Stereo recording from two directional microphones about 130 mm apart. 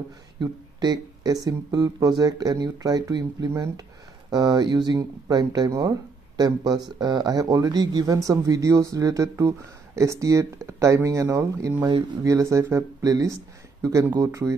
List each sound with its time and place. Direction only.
0.4 s speech: 30° right (ahead or behind)